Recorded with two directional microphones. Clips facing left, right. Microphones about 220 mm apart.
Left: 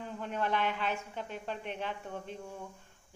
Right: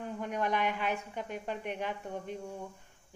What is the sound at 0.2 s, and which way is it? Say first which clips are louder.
A man's voice: right 1 dB; 15° right (ahead or behind).